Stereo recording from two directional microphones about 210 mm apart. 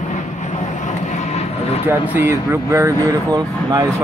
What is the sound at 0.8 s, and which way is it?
Vehicle, 35° left (ahead or behind).